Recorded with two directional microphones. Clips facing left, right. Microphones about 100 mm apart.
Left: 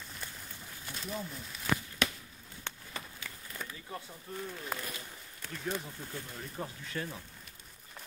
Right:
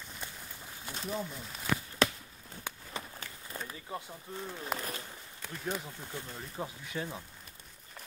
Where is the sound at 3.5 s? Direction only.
30° right (ahead or behind).